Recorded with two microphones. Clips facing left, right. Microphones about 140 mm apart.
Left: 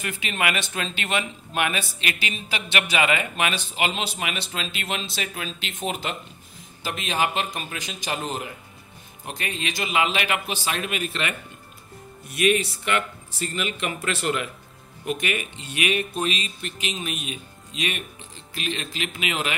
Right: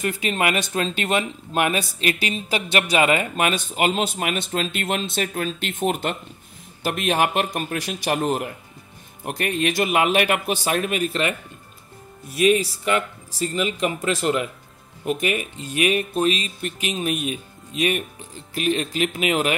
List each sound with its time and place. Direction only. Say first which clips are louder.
0.0 s a man's voice: right 5 dB; 40° right (ahead or behind)